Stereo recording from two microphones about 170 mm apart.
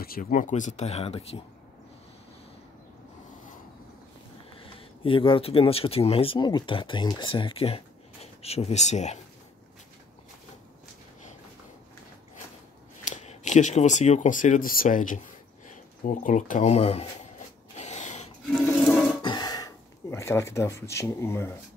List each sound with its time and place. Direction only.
0.0 s speech: 55° left (ahead or behind); by 1.4 s 35° left (ahead or behind)
4.6 s speech: 30° left (ahead or behind)
13.0 s speech: 45° left (ahead or behind)
17.7 s rub: 40° left (ahead or behind)
19.2 s a sound: 25° left (ahead or behind)